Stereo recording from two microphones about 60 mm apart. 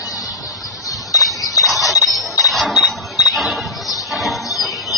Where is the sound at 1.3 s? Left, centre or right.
Left.